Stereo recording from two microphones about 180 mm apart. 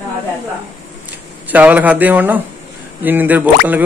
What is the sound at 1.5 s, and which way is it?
Speech, 10° right (ahead or behind).